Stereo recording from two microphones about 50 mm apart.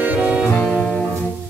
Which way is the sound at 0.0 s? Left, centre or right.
Right.